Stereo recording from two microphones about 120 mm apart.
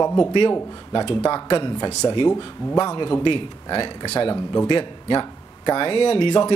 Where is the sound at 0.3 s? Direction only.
40° left (ahead or behind).